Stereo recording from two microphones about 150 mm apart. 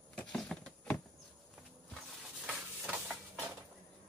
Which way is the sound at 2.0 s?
5° right (ahead or behind).